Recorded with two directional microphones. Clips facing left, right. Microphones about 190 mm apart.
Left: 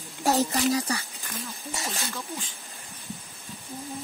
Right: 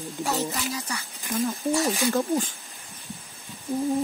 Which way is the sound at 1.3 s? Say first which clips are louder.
Right 13 dB; 45° right (ahead or behind).